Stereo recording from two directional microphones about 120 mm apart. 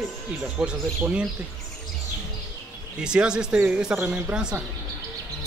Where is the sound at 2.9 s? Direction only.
5° right (ahead or behind).